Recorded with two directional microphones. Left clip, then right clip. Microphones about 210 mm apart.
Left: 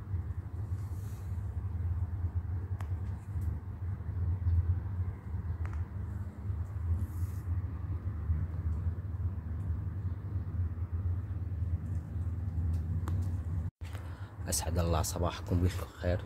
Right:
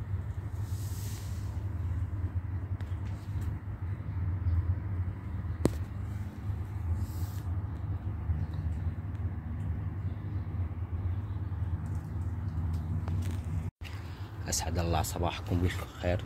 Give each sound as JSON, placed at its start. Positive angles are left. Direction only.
{"t": 14.4, "sound": "speech", "side_deg": 20}